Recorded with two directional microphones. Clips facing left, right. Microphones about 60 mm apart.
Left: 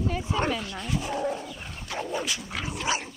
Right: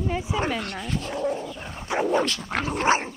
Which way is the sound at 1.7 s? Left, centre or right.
Right.